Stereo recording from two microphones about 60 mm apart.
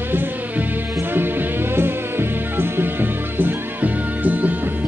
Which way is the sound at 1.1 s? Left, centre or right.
Right.